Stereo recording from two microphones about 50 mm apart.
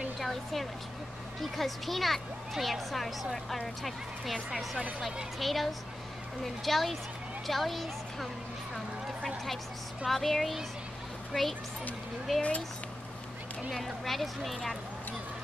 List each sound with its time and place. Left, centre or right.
0.2 s speech: centre
10.0 s speech: centre
12.4 s speech: left
13.7 s speech: centre